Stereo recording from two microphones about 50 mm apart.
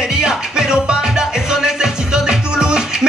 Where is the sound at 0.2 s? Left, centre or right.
Centre.